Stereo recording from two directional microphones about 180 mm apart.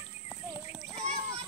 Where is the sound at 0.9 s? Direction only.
35° right (ahead or behind).